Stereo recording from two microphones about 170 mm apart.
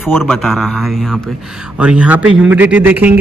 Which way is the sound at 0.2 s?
Centre (ahead or behind).